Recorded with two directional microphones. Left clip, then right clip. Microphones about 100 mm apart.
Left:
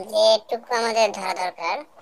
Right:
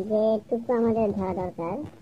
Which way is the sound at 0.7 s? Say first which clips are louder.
Left 3 dB; 20° left (ahead or behind).